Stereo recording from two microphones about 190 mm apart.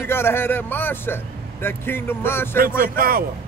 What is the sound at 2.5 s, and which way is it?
Speech, 50° right (ahead or behind).